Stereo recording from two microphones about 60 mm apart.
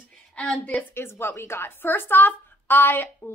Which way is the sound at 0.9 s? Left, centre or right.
Left.